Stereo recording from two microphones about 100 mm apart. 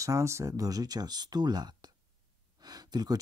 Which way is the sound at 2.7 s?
40° right (ahead or behind).